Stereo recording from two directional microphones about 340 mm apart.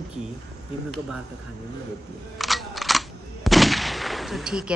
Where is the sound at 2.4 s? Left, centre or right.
Centre.